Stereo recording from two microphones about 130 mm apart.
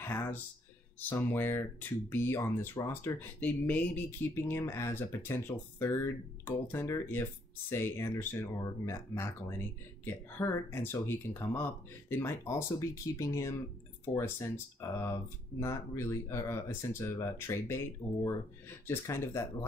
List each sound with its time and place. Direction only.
0.0 s speech: 15° left (ahead or behind)